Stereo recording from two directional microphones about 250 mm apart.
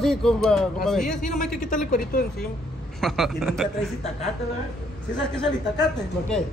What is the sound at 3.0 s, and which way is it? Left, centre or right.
Speech, centre.